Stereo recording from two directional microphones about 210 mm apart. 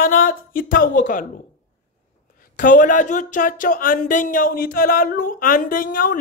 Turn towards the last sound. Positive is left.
turn(degrees=40)  # may be behind; listen again after turning